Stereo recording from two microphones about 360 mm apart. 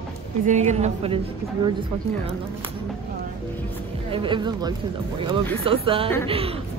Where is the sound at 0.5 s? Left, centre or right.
Centre.